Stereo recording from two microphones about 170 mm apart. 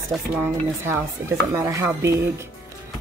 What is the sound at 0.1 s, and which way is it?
Speech, 10° right (ahead or behind).